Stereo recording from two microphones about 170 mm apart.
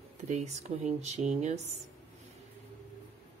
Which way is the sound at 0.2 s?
45° right (ahead or behind).